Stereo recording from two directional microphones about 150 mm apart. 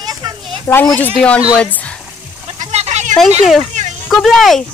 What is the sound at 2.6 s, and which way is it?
Sheep, 45° right (ahead or behind).